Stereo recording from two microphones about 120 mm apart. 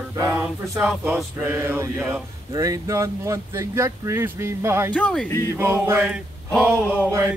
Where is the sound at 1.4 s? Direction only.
20° right (ahead or behind).